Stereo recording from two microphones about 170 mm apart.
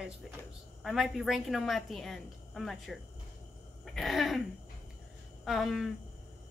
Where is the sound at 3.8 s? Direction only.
Centre (ahead or behind).